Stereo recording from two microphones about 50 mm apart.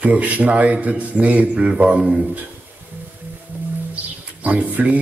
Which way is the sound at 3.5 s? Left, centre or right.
Right.